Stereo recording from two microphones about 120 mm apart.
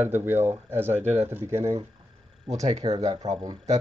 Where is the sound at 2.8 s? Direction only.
35° right (ahead or behind).